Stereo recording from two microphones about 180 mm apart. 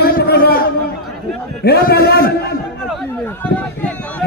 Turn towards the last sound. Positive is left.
turn(degrees=5)  # may be behind; listen again after turning